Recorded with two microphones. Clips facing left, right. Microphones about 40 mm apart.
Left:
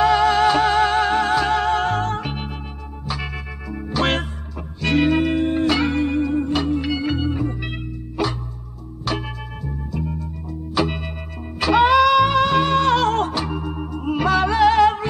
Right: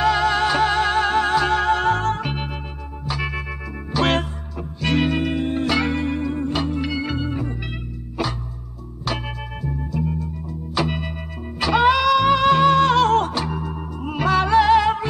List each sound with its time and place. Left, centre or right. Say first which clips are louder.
0.0 s music: left 3 dB; centre
3.9 s music: right 1 dB; centre
10.7 s music: left 1 dB; centre
13.7 s music: left 3 dB; centre
14.0 s music: left 1 dB; centre